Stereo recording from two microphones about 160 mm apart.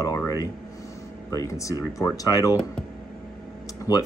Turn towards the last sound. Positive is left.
turn(degrees=25)  # may be behind; listen again after turning